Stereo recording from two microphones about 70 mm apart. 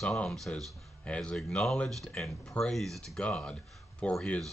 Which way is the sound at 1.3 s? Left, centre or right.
Centre.